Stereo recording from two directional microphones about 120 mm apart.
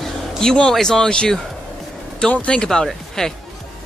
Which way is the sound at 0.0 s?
5° left (ahead or behind).